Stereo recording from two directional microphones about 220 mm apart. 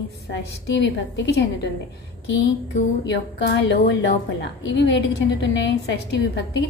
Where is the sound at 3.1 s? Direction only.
50° left (ahead or behind).